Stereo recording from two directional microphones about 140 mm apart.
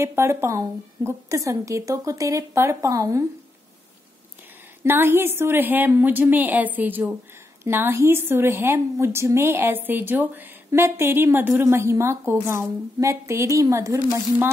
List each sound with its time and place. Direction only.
0.0 s a woman's voice: 20° right (ahead or behind)
4.8 s a woman's voice: 15° right (ahead or behind)